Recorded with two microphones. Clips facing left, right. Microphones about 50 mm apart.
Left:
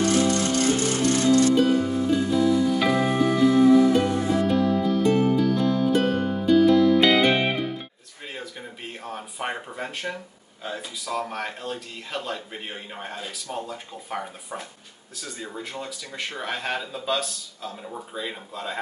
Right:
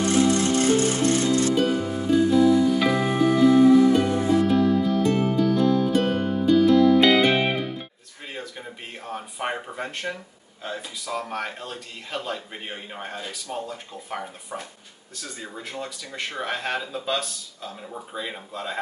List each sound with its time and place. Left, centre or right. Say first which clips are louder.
0.0 s music: right 1 dB; right
1.5 s music: left 2 dB; centre
8.4 s a sound: right 2 dB; centre
10.6 s speech: even; centre